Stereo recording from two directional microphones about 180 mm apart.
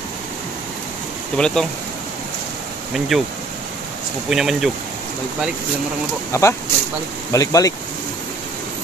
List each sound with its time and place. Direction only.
1.3 s speech: 5° left (ahead or behind)
3.1 s speech: centre (ahead or behind)
4.3 s speech: centre (ahead or behind)
6.3 s speech: 15° left (ahead or behind)